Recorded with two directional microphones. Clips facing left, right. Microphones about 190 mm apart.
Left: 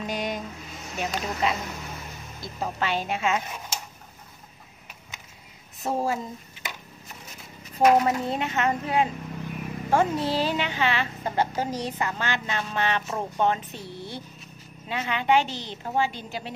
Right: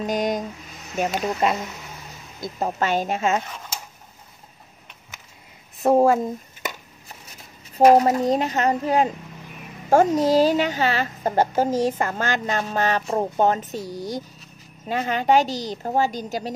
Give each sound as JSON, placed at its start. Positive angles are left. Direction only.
{"t": 0.0, "sound": "a sound", "side_deg": -45}
{"t": 1.0, "sound": "speech", "side_deg": -50}
{"t": 5.8, "sound": "speech", "side_deg": -55}
{"t": 7.8, "sound": "speech", "side_deg": -35}